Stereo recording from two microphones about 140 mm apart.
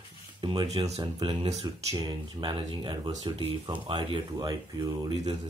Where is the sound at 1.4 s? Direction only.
45° right (ahead or behind).